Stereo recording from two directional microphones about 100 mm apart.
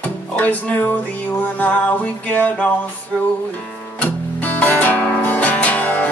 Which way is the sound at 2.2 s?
15° left (ahead or behind).